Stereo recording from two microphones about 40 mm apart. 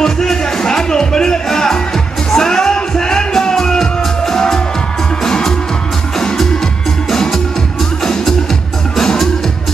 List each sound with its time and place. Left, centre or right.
0.0 s music: centre